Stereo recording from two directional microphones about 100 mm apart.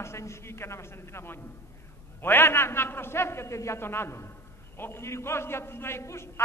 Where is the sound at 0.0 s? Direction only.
30° left (ahead or behind).